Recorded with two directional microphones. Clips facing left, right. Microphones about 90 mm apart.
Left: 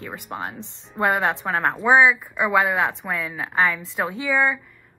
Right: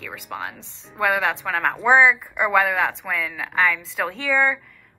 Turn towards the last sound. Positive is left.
turn(degrees=15)  # may be behind; listen again after turning